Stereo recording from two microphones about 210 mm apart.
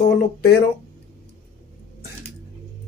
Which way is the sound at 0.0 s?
50° left (ahead or behind).